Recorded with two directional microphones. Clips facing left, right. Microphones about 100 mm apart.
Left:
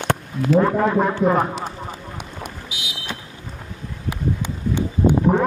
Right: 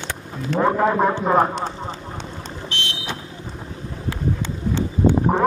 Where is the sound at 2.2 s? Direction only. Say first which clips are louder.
Right 1 dB; 10° left (ahead or behind).